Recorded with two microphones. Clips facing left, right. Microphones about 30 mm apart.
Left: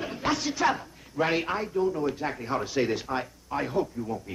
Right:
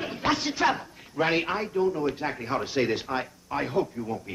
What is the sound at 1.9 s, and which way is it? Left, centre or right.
Speech, centre.